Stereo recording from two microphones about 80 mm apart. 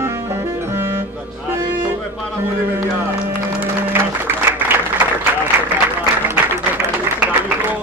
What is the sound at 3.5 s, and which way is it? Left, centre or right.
Music, right.